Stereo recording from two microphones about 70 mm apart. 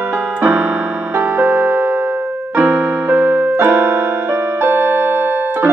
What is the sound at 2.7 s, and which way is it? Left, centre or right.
Keyboard, right.